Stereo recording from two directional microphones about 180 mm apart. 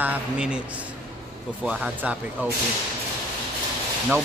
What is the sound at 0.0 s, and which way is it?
Speech, 5° right (ahead or behind).